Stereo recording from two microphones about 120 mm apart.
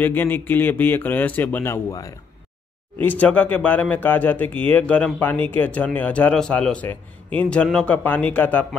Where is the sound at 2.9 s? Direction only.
15° left (ahead or behind).